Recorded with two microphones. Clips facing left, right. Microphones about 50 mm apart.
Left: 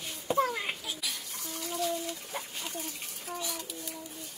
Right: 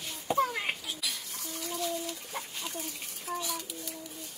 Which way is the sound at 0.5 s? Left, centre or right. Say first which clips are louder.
Right 1 dB; centre.